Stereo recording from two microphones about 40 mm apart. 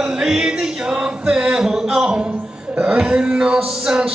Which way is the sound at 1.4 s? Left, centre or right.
Centre.